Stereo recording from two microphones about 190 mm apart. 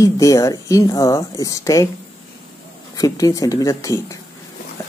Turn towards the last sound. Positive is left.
turn(degrees=15)  # may be behind; listen again after turning